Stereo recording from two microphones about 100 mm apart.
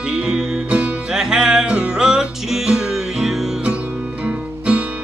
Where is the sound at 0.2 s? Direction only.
10° right (ahead or behind).